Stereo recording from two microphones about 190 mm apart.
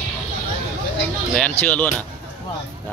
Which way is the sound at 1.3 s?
5° left (ahead or behind).